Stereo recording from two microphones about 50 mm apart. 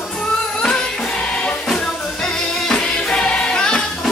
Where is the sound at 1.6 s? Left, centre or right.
Centre.